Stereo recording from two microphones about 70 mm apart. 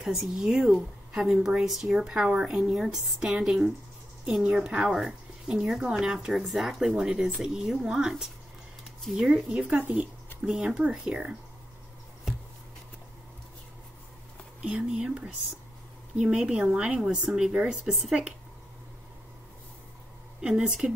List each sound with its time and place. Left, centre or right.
0.0 s a woman's voice: centre
14.6 s a woman's voice: centre
20.3 s a woman's voice: centre